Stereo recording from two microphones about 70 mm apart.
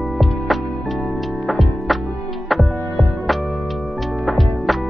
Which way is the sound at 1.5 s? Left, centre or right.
Centre.